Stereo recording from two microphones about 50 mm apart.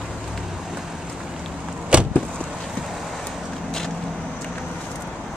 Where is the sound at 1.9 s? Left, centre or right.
Right.